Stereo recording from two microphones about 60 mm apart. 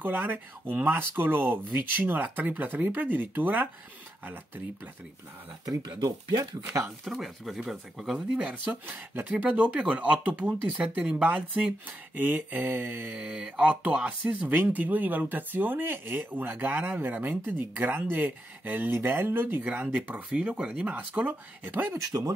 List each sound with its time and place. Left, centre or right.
0.0 s speech: right
5.7 s speech: right
7.1 s speech: centre
8.4 s speech: right
13.1 s speech: centre
13.6 s speech: right
21.9 s speech: right